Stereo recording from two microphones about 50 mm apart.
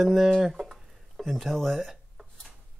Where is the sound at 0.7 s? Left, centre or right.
Centre.